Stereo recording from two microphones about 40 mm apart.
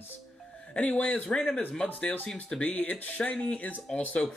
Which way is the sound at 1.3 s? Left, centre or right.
Left.